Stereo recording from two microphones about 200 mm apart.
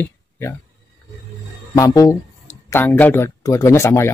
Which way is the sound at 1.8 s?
20° left (ahead or behind).